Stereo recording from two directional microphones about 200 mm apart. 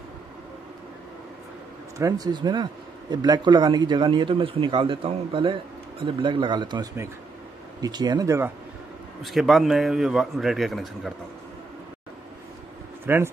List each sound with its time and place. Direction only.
2.0 s speech: 20° right (ahead or behind)
9.2 s a man's voice: centre (ahead or behind)
13.0 s speech: 10° right (ahead or behind)